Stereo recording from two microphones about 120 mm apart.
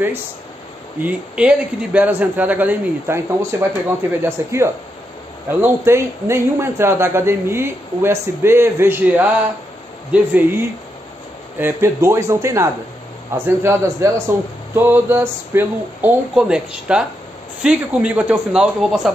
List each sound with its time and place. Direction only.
1.0 s a man's voice: 10° right (ahead or behind)
16.3 s a man's voice: 5° right (ahead or behind)